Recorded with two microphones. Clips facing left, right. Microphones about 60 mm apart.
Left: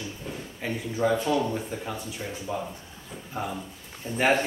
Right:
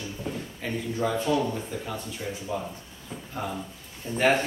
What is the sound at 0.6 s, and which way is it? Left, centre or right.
Speech, centre.